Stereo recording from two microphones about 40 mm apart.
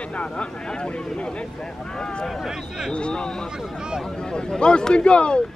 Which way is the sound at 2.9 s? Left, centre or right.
Left.